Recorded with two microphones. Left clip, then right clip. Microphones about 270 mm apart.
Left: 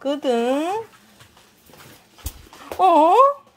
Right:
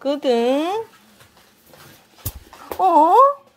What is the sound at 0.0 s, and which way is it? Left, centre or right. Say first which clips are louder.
Speech: right 2 dB; centre.